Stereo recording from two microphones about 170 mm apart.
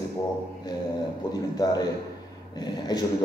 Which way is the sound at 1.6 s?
20° left (ahead or behind).